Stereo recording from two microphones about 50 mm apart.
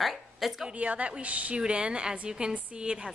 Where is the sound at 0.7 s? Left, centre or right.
Right.